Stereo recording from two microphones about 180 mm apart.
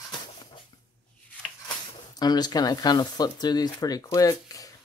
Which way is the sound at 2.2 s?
20° left (ahead or behind).